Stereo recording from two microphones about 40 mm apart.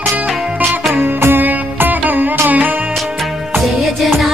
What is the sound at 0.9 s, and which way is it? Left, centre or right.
Music, right.